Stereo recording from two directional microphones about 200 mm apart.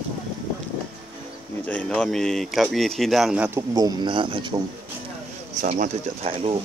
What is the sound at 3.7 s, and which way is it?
Speech, 20° right (ahead or behind).